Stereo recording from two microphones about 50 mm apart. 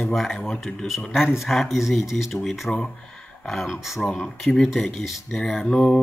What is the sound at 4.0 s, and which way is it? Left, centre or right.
Speech, centre.